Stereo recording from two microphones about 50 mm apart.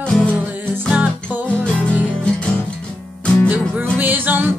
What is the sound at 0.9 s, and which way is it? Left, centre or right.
Music, right.